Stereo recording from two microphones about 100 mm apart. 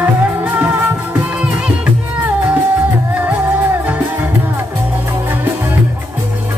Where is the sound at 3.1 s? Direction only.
15° right (ahead or behind).